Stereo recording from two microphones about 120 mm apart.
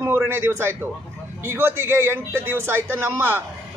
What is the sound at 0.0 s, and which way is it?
A man's voice, 20° right (ahead or behind).